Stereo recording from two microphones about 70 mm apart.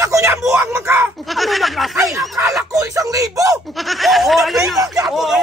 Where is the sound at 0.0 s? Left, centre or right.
Right.